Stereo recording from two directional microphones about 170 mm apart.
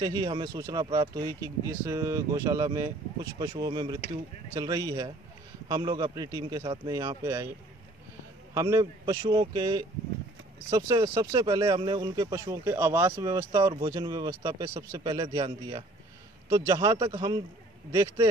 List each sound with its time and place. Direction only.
0.0 s speech: 25° right (ahead or behind)
8.5 s speech: 20° right (ahead or behind)